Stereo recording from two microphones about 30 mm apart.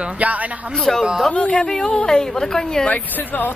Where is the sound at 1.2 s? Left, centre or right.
Left.